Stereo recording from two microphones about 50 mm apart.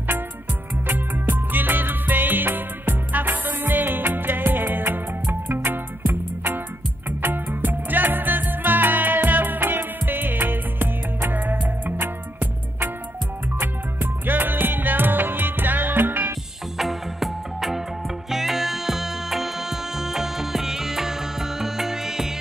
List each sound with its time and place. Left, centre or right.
0.8 s music: right
14.2 s music: right
16.7 s music: centre